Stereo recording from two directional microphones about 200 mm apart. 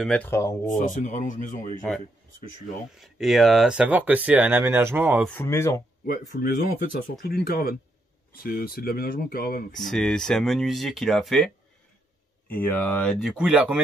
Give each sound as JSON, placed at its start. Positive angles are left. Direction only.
{"t": 0.0, "sound": "speech", "side_deg": 0}
{"t": 0.3, "sound": "speech", "side_deg": 15}
{"t": 0.7, "sound": "speech", "side_deg": 40}
{"t": 3.0, "sound": "speech", "side_deg": 0}
{"t": 5.3, "sound": "speech", "side_deg": 10}
{"t": 6.0, "sound": "speech", "side_deg": 45}
{"t": 9.8, "sound": "speech", "side_deg": 0}